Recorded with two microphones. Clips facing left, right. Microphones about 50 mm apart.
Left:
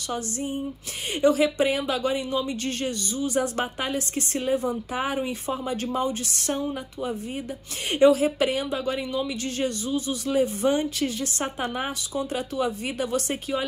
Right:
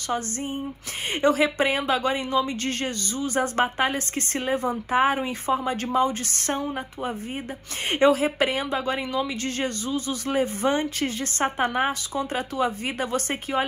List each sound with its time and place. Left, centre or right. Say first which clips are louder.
0.1 s speech: right 2 dB; right